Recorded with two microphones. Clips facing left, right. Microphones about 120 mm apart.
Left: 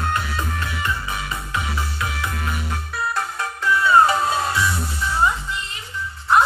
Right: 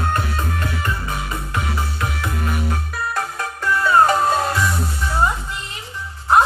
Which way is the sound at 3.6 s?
45° right (ahead or behind).